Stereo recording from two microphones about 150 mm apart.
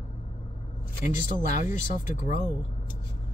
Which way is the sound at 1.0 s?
60° left (ahead or behind).